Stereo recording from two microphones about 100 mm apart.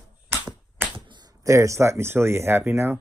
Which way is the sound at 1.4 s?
30° right (ahead or behind).